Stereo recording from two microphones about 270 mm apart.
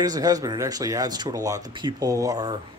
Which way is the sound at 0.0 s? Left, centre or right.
Centre.